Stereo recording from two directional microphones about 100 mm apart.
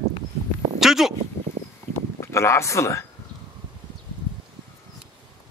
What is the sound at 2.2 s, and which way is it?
Speech, 25° left (ahead or behind).